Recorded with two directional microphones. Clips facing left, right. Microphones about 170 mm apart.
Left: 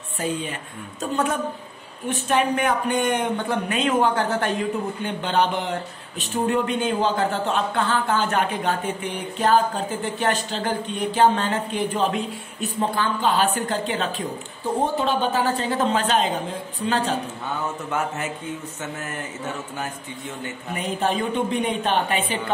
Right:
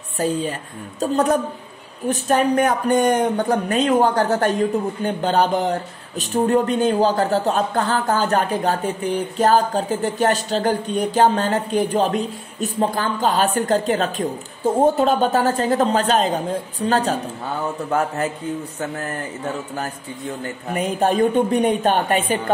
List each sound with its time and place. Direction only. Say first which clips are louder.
0.2 s a woman's voice: right 5 dB; 40° right (ahead or behind)
20.7 s a woman's voice: right 5 dB; 45° right (ahead or behind)